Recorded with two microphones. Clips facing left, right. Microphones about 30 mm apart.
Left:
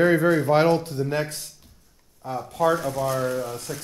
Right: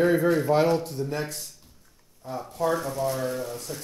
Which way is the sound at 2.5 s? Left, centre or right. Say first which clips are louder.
Left 4 dB; left.